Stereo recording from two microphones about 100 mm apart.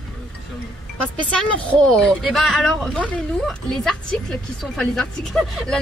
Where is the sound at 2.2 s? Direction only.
Centre (ahead or behind).